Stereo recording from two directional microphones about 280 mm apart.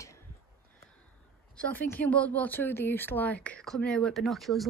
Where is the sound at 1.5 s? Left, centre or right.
Centre.